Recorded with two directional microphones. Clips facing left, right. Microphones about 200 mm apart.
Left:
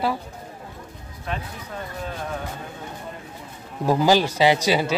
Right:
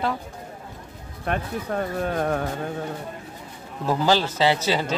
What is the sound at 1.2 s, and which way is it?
Speech, 55° right (ahead or behind).